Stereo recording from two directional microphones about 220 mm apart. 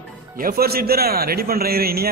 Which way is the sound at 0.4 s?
45° right (ahead or behind).